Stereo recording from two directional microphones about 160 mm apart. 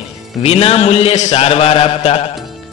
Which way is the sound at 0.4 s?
40° left (ahead or behind).